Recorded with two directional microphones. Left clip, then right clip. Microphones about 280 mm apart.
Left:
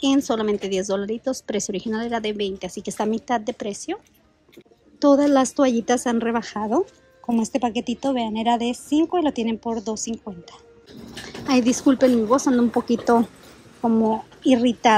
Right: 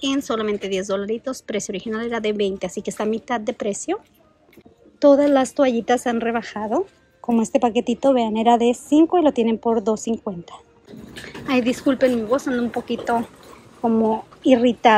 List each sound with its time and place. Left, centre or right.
0.0 s speech: centre
5.0 s a woman's voice: centre